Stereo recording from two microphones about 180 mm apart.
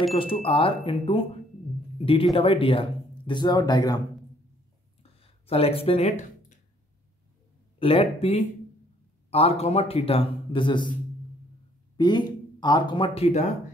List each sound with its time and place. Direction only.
0.1 s a man's voice: 30° left (ahead or behind)
2.3 s speech: 30° left (ahead or behind)
5.2 s a sound: 35° left (ahead or behind)
7.8 s a man's voice: 30° left (ahead or behind)
12.0 s speech: 25° left (ahead or behind); by 13.6 s 40° left (ahead or behind)